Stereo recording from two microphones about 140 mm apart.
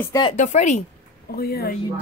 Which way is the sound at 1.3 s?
90° left.